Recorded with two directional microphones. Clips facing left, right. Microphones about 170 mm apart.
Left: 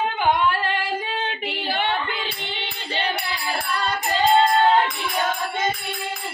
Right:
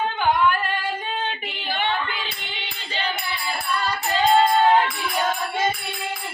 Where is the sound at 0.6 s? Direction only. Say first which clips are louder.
Left 2 dB; 90° left; by 2.0 s 70° left (ahead or behind).